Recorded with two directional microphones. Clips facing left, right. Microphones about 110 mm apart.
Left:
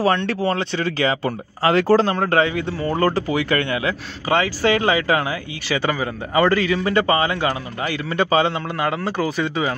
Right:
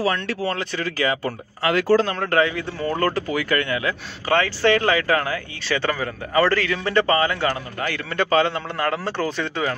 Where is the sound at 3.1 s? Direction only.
25° left (ahead or behind).